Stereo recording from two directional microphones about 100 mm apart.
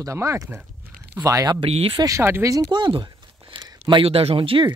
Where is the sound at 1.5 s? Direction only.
75° right (ahead or behind).